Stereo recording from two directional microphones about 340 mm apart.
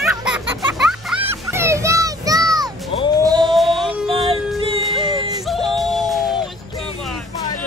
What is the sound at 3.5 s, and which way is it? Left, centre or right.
Music, centre.